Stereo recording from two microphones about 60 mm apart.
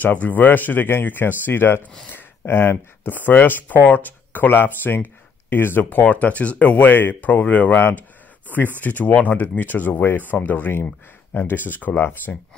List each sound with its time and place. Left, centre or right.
0.0 s speech: left